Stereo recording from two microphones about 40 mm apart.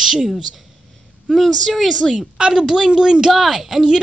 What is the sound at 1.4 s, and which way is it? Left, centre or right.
Speech, centre.